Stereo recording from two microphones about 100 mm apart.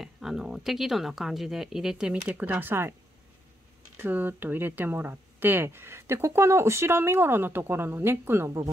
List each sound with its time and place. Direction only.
0.0 s speech: 5° right (ahead or behind); by 2.9 s 20° right (ahead or behind)
3.9 s speech: 20° right (ahead or behind)